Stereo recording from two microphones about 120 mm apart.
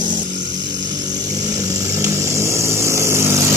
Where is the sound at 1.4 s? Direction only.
25° right (ahead or behind).